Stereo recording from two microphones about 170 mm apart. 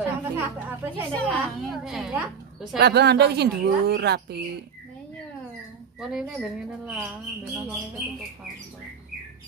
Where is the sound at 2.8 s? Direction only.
75° right (ahead or behind).